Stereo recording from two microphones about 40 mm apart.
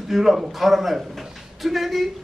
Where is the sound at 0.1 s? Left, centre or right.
Centre.